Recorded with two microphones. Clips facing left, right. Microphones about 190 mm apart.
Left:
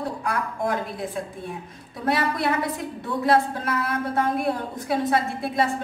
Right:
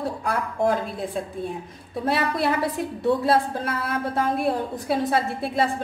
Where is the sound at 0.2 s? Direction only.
30° right (ahead or behind).